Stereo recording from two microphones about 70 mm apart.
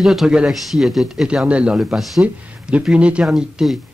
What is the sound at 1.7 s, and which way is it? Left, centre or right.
Speech, centre.